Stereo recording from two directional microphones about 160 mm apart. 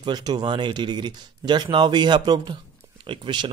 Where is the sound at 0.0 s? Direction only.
25° right (ahead or behind).